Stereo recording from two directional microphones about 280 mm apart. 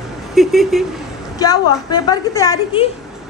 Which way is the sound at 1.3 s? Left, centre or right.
Centre.